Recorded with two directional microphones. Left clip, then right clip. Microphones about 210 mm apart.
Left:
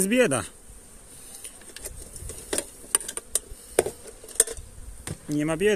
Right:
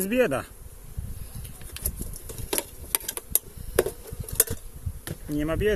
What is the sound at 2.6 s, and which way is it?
Tick-tock, 20° right (ahead or behind).